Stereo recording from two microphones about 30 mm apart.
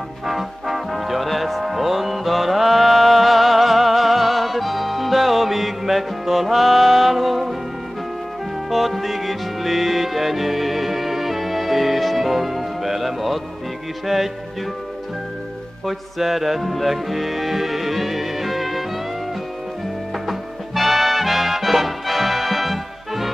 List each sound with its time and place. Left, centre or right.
0.3 s music: centre
8.6 s music: centre
15.8 s music: centre
20.2 s music: centre